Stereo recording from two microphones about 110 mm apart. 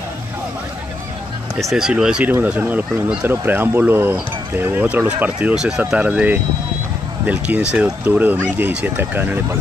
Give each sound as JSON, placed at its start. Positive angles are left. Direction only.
{"t": 1.6, "sound": "speech", "side_deg": -5}